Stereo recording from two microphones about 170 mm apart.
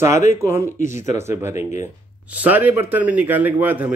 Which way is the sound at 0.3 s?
15° right (ahead or behind).